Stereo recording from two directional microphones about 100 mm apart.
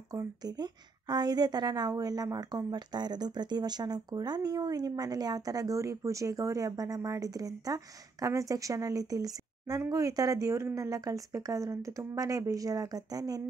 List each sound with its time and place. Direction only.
0.1 s a woman's voice: 40° right (ahead or behind)